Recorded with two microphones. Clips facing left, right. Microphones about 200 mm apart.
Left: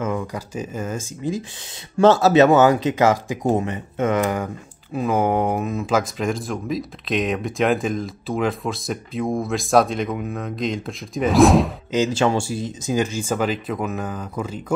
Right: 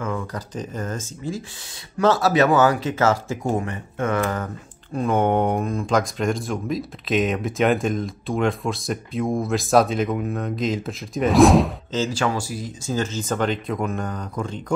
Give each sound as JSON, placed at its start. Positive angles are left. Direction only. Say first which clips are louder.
{"t": 0.0, "sound": "speech", "louder": "left 3 dB", "side_deg": 15}
{"t": 4.9, "sound": "speech", "louder": "even", "side_deg": 5}
{"t": 11.9, "sound": "speech", "louder": "left 7 dB", "side_deg": 20}